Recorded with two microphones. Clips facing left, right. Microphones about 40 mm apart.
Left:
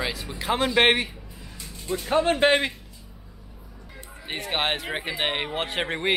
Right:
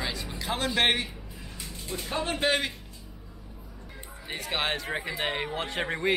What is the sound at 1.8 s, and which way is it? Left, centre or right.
Speech, left.